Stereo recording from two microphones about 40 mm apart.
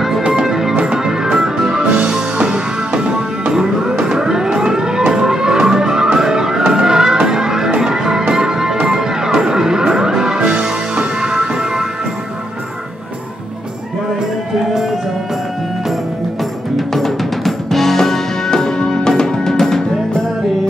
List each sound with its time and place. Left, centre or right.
0.3 s music: centre
3.5 s music: centre
16.7 s music: centre